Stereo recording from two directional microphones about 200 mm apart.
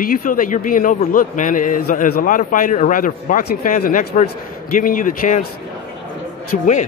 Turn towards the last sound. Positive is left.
turn(degrees=40)  # may be behind; listen again after turning